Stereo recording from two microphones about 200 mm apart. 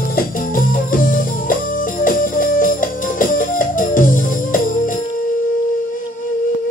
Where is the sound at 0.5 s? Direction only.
45° left (ahead or behind).